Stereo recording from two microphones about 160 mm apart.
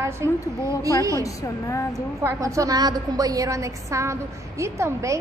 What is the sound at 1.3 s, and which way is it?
Speech, 20° left (ahead or behind).